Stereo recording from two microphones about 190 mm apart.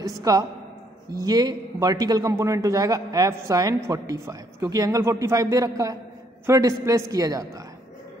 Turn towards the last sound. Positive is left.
turn(degrees=-20)  # may be behind; listen again after turning